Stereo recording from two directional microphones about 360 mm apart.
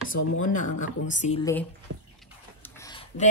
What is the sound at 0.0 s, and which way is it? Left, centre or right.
Speech, left.